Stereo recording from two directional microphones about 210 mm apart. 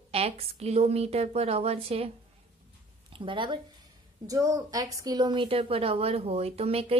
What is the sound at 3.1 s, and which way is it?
A woman's voice, 25° right (ahead or behind).